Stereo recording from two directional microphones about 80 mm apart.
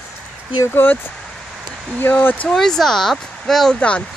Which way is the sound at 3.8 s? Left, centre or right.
Centre.